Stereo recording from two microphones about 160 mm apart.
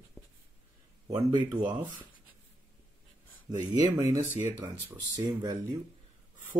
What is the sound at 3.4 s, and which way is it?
Speech, 25° right (ahead or behind).